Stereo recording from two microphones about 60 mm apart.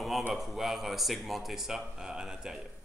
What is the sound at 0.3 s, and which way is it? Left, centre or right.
A man's voice, centre.